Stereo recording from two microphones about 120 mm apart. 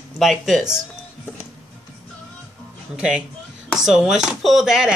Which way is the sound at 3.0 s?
10° right (ahead or behind).